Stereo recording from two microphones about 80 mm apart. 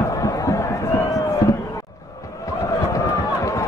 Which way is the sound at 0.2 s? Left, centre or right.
Left.